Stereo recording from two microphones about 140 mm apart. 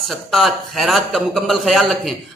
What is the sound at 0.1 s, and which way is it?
A man's voice, centre (ahead or behind).